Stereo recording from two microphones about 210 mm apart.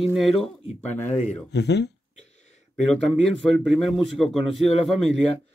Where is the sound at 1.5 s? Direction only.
55° left (ahead or behind).